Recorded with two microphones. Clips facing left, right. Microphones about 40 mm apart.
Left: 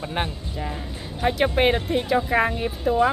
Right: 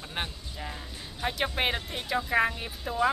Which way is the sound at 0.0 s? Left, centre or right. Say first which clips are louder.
Left 8 dB; centre.